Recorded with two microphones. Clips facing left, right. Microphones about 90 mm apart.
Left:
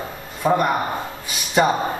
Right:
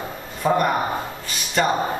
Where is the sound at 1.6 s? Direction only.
15° left (ahead or behind).